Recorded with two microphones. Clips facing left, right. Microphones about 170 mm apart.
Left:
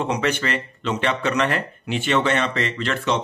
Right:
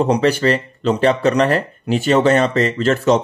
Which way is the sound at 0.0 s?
35° right (ahead or behind).